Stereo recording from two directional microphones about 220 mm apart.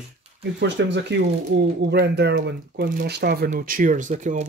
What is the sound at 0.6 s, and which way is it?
Speech, 55° right (ahead or behind).